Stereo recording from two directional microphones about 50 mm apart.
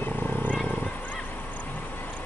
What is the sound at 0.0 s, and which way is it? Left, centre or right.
Wild animals, left.